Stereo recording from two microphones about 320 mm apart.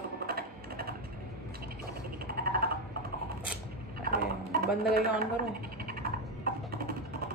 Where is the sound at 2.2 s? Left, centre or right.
Right.